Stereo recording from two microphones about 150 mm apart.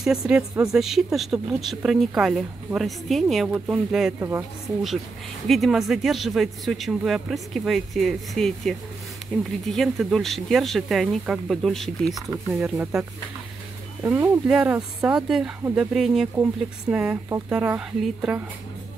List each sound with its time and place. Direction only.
0.0 s speech: 5° right (ahead or behind)
4.2 s a woman's voice: 20° right (ahead or behind)
5.5 s speech: centre (ahead or behind)
12.3 s a woman's voice: 10° right (ahead or behind)
14.0 s a woman's voice: 15° right (ahead or behind)